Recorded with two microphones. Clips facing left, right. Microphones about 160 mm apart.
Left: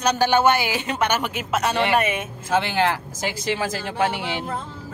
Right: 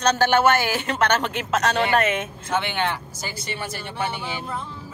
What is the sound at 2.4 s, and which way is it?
Speech, 90° left.